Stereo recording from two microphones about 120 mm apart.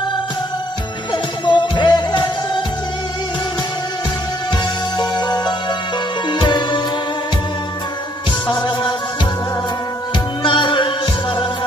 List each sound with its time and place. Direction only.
1.1 s music: 40° left (ahead or behind)
4.9 s music: 35° left (ahead or behind)
8.5 s music: 40° left (ahead or behind)
10.4 s music: 45° left (ahead or behind)